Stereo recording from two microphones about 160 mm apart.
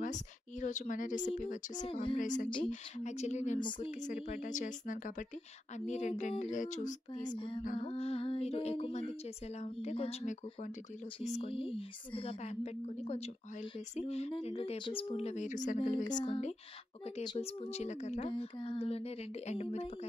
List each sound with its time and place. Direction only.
0.0 s speech: 50° left (ahead or behind)
1.9 s a woman's voice: 35° left (ahead or behind)
2.1 s speech: 55° left (ahead or behind)
3.5 s speech: 30° left (ahead or behind)
4.0 s speech: 50° left (ahead or behind)
7.2 s a woman's voice: 30° left (ahead or behind); by 15.8 s 50° left (ahead or behind)
15.8 s speech: 30° left (ahead or behind)
16.3 s speech: 45° left (ahead or behind)
17.2 s speech: 30° left (ahead or behind)
17.6 s speech: 45° left (ahead or behind)
18.2 s a woman's voice: 35° left (ahead or behind)